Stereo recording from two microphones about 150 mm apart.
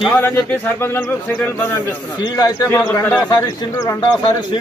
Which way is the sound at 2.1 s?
25° left (ahead or behind).